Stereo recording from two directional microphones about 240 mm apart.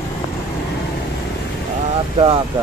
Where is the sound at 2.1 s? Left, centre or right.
Right.